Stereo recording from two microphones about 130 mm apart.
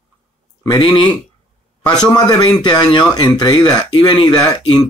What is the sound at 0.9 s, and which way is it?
Speech, 40° left (ahead or behind).